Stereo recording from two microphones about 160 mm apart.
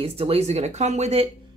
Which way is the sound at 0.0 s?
40° right (ahead or behind).